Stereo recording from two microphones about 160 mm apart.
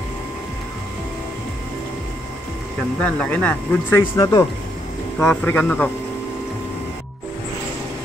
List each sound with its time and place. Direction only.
3.0 s speech: 10° left (ahead or behind)
4.2 s speech: 20° left (ahead or behind)
5.2 s speech: 10° left (ahead or behind)